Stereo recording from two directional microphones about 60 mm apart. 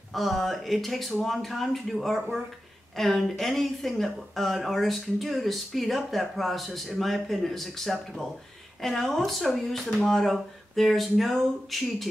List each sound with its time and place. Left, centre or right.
0.1 s speech: centre